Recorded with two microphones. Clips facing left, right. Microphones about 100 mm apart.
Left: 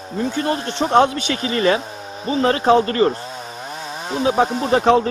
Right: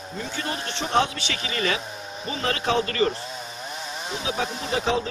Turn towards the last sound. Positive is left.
turn(degrees=50)  # may be behind; listen again after turning